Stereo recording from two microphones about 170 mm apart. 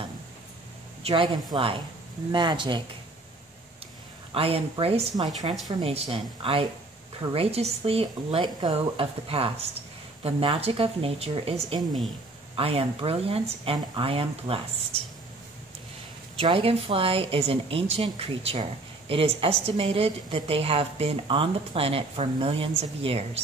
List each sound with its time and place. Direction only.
1.0 s a woman's voice: 30° right (ahead or behind)
4.3 s a woman's voice: 35° right (ahead or behind)
5.1 s a woman's voice: 25° right (ahead or behind)
7.2 s a woman's voice: 35° right (ahead or behind)
16.3 s a woman's voice: 30° right (ahead or behind)